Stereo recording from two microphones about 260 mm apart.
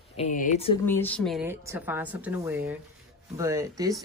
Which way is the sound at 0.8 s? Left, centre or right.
Centre.